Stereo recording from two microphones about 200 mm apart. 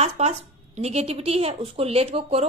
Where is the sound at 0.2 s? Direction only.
35° right (ahead or behind).